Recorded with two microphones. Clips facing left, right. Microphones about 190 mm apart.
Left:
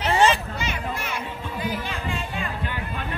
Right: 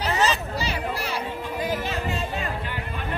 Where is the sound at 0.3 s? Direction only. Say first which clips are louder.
Left 1 dB; 35° right (ahead or behind).